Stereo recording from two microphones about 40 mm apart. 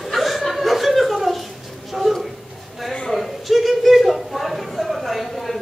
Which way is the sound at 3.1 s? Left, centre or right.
Centre.